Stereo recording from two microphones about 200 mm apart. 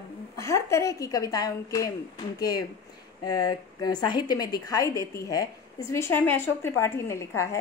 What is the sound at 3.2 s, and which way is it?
Speech, 20° left (ahead or behind).